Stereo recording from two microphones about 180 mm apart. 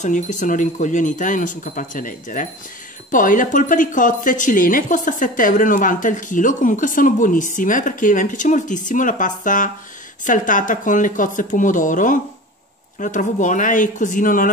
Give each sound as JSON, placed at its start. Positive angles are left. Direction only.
{"t": 0.0, "sound": "speech", "side_deg": 45}